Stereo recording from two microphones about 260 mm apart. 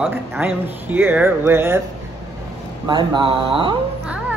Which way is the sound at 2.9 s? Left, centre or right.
Centre.